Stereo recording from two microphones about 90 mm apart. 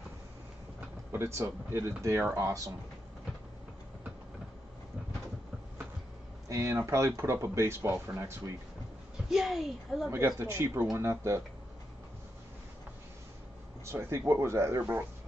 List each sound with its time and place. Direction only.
0.7 s speech: 30° right (ahead or behind)
6.5 s speech: 30° right (ahead or behind)
9.3 s a woman's voice: 5° right (ahead or behind)
10.1 s speech: 30° right (ahead or behind)
13.8 s speech: 25° right (ahead or behind)